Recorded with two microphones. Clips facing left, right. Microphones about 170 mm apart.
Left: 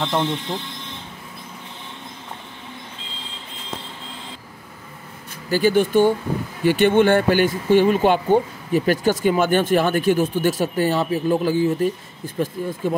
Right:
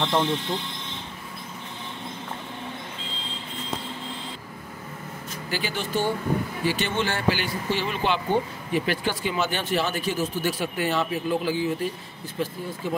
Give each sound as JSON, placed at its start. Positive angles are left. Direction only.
{"t": 0.0, "sound": "speech", "side_deg": 0}
{"t": 5.5, "sound": "speech", "side_deg": 45}
{"t": 10.6, "sound": "speech", "side_deg": 40}